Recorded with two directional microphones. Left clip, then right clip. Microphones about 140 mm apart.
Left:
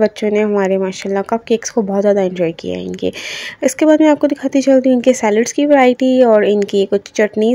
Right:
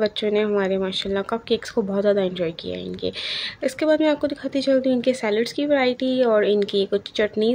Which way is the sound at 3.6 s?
45° left (ahead or behind).